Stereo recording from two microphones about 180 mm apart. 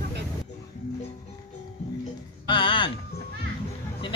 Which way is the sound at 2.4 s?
30° left (ahead or behind).